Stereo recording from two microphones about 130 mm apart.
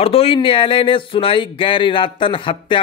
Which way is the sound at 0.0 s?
45° left (ahead or behind).